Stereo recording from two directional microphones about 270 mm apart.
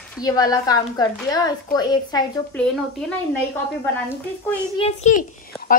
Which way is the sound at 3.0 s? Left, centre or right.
Centre.